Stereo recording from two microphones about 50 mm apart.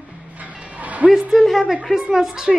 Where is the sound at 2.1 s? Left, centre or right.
Centre.